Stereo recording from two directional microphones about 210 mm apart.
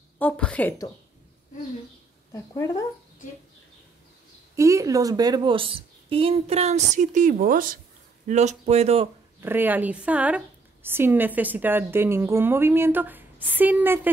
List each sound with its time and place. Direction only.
0.2 s a woman's voice: 5° left (ahead or behind)
2.3 s a woman's voice: 15° left (ahead or behind)
4.6 s a woman's voice: 15° right (ahead or behind); by 9.1 s 30° right (ahead or behind)
9.4 s a woman's voice: 10° right (ahead or behind)